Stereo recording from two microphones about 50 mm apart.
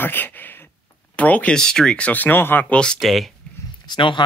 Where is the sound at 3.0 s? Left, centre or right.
Centre.